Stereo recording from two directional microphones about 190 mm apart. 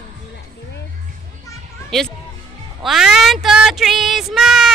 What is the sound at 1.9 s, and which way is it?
Speech, centre (ahead or behind).